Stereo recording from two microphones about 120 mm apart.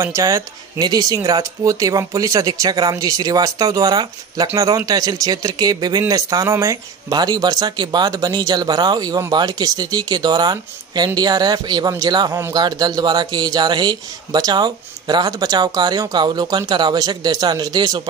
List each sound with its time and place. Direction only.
0.0 s speech: 25° right (ahead or behind)
0.7 s speech: 35° right (ahead or behind)